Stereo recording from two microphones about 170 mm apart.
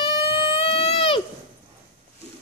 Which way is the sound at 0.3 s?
30° left (ahead or behind).